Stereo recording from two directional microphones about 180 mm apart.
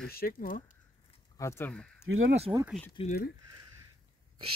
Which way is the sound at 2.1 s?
90° right.